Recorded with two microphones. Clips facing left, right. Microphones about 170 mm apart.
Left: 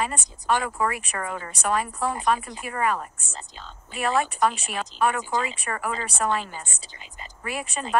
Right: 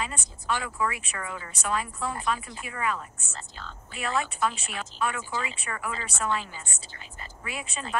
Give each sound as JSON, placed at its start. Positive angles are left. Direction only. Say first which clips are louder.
{"t": 0.0, "sound": "speech", "louder": "left 6 dB", "side_deg": 55}
{"t": 3.3, "sound": "speech", "louder": "left 1 dB", "side_deg": 15}
{"t": 3.9, "sound": "speech", "louder": "left 5 dB", "side_deg": 55}